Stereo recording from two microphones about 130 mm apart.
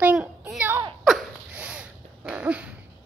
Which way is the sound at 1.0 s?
5° right (ahead or behind).